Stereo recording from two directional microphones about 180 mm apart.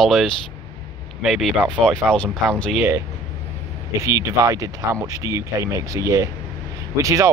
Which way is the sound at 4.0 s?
15° right (ahead or behind).